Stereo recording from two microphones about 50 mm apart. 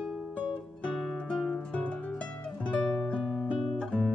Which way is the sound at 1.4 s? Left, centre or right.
Centre.